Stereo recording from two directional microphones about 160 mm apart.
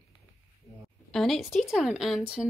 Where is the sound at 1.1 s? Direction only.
Centre (ahead or behind).